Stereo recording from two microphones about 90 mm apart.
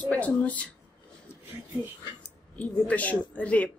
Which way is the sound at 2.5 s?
15° left (ahead or behind).